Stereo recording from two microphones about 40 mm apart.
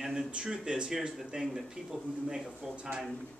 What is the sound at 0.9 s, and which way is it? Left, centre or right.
Speech, centre.